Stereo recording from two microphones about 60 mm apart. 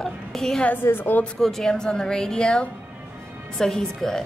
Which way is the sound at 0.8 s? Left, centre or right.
Left.